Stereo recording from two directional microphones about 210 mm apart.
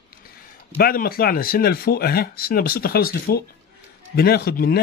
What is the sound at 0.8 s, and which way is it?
Speech, 45° left (ahead or behind).